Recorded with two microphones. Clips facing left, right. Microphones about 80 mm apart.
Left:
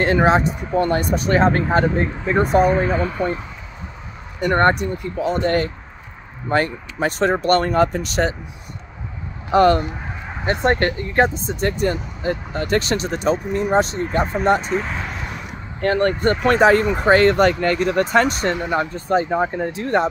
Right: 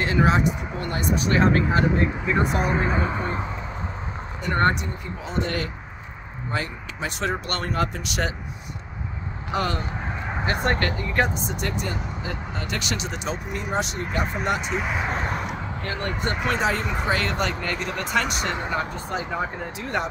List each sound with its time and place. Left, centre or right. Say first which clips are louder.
0.0 s speech: left 5 dB; left
2.6 s speech: left 6 dB; centre
4.4 s speech: left 6 dB; left
7.2 s speech: left 11 dB; left
9.5 s speech: left 12 dB; left
10.4 s speech: left 6 dB; left
14.6 s speech: left 3 dB; centre
15.0 s a sound: right 4 dB; right
15.8 s speech: left 12 dB; left